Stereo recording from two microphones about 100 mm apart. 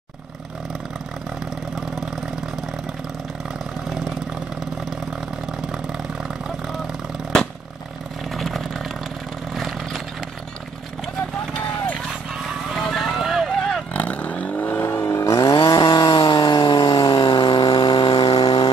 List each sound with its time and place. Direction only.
8.4 s vehicle: centre (ahead or behind)
12.4 s vehicle: centre (ahead or behind)
13.9 s vehicle: 15° left (ahead or behind); by 15.5 s 35° left (ahead or behind)
15.5 s chainsaw: 50° left (ahead or behind)
17.1 s chainsaw: 60° left (ahead or behind)